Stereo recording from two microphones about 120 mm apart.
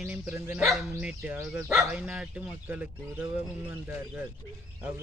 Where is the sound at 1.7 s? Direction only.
Centre (ahead or behind).